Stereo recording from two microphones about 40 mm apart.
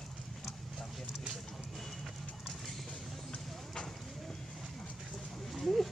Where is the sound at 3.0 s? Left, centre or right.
Centre.